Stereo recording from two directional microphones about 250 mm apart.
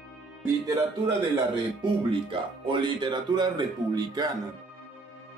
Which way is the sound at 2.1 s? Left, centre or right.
Centre.